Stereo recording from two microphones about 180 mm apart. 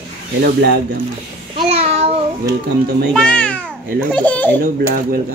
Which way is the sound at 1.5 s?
35° right (ahead or behind).